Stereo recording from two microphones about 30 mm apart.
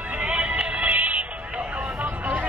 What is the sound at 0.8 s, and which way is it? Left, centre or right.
Music, right.